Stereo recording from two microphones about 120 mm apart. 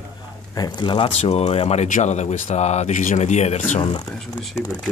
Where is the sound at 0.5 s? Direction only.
35° left (ahead or behind).